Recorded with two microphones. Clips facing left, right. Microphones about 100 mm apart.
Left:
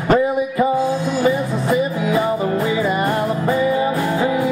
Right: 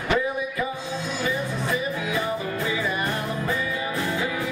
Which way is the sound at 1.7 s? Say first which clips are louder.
Left 10 dB; 25° left (ahead or behind).